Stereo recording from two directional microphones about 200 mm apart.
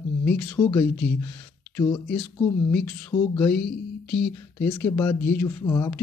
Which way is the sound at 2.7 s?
5° left (ahead or behind).